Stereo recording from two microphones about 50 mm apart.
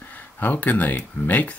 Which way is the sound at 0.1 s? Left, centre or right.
Left.